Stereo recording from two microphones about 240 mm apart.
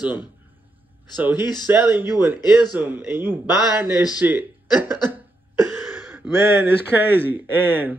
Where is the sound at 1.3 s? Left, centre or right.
Centre.